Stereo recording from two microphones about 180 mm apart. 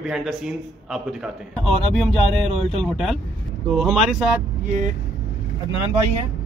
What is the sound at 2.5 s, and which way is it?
Speech, 35° right (ahead or behind).